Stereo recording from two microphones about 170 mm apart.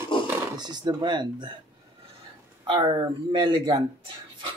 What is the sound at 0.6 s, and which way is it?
Speech, 25° right (ahead or behind).